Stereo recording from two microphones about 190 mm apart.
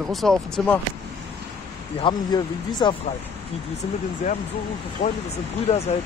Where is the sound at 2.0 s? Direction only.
25° left (ahead or behind).